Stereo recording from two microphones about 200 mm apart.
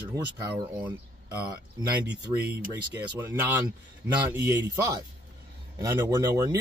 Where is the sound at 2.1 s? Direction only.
55° right (ahead or behind).